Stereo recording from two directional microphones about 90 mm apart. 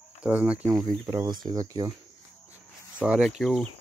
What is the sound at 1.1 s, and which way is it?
Speech, 50° right (ahead or behind).